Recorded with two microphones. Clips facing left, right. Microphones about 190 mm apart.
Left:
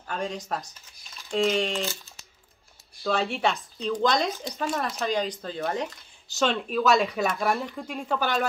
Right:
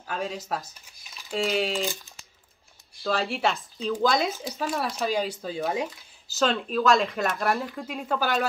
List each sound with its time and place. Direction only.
0.0 s speech: 5° right (ahead or behind)
3.0 s speech: centre (ahead or behind)